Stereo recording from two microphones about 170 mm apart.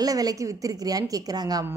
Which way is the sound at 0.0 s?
20° right (ahead or behind).